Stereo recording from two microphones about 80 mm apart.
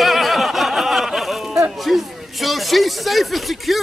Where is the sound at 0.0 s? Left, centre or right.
Centre.